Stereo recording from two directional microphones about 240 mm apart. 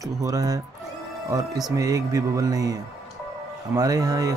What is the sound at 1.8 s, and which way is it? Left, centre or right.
Speech, centre.